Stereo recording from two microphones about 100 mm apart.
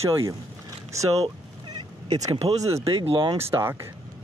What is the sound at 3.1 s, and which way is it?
Speech, 65° right (ahead or behind).